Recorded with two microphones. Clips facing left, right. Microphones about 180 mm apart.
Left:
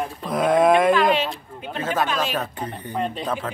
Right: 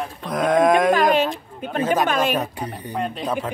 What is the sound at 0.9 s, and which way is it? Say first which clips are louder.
Speech: right 2 dB; 45° right (ahead or behind).